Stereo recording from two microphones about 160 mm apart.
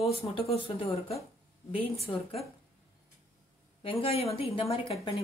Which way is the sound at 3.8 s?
35° left (ahead or behind).